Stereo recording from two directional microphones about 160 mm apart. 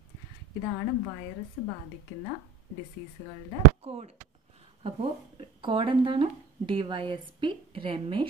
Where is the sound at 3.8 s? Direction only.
40° right (ahead or behind).